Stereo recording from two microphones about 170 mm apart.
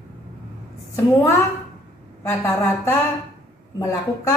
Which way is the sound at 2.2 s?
10° left (ahead or behind).